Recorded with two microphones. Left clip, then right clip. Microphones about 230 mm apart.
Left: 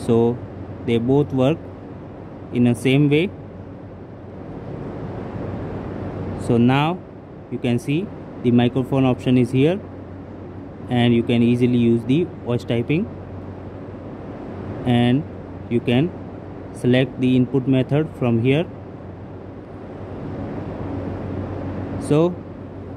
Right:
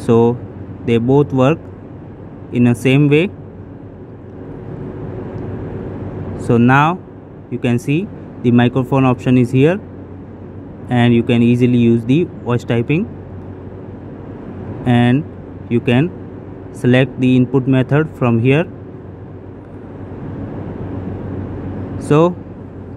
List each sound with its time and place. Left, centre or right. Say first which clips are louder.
0.0 s speech: right 6 dB; centre
6.4 s speech: right 7 dB; centre
10.9 s speech: right 5 dB; centre
14.9 s speech: right 5 dB; centre
21.9 s vehicle: right 6 dB; centre